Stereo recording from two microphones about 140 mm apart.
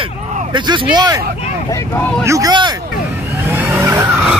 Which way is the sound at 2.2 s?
25° right (ahead or behind).